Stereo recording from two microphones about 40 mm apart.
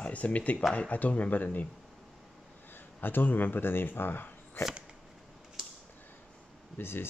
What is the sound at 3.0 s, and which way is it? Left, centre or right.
Speech, left.